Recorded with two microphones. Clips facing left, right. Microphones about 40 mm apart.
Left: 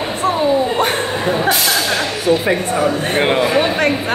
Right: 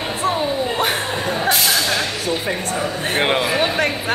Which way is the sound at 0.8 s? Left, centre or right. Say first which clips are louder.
Left 3 dB; centre.